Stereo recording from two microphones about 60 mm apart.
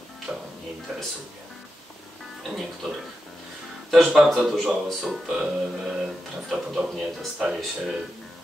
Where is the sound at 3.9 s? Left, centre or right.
Centre.